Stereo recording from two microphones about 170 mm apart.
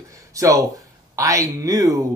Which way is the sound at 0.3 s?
20° right (ahead or behind).